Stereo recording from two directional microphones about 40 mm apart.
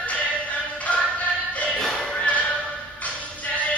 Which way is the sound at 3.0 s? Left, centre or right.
Left.